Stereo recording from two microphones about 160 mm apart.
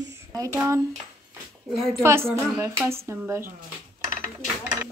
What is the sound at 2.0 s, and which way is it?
A woman's voice, 15° right (ahead or behind).